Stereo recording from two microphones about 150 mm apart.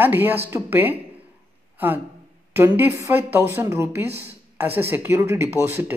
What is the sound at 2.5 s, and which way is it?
Speech, 15° right (ahead or behind).